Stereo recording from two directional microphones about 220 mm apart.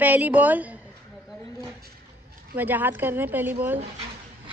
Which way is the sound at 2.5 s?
10° right (ahead or behind).